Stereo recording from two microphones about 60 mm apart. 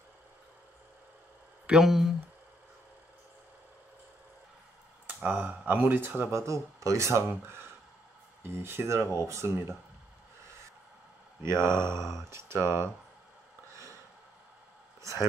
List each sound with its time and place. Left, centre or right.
1.7 s speech: centre
5.0 s speech: right
6.3 s speech: right
8.8 s speech: right
11.6 s speech: right
15.0 s a sound: right